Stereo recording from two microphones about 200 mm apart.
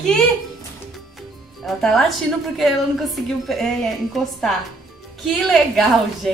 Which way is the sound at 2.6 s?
Centre (ahead or behind).